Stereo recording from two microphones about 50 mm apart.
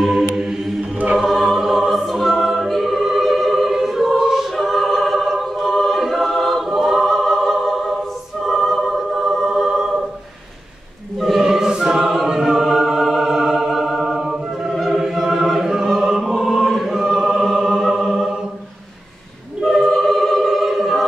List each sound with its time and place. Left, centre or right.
0.0 s chant: centre
1.1 s choir: centre
8.5 s music: centre
11.1 s choir: centre
14.7 s opera: centre
16.0 s choir: centre
19.6 s choir: centre